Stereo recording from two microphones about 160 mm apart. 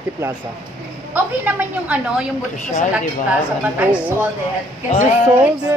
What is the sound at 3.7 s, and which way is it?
Speech, 10° right (ahead or behind).